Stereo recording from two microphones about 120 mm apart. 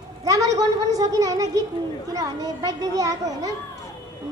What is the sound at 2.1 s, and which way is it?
Speech, 30° right (ahead or behind).